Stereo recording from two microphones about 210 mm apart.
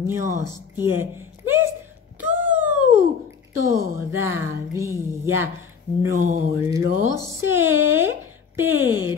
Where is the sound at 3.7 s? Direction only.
15° right (ahead or behind).